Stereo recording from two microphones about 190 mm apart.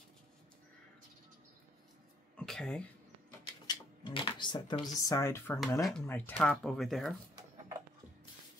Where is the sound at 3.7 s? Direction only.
25° left (ahead or behind); by 7.1 s centre (ahead or behind).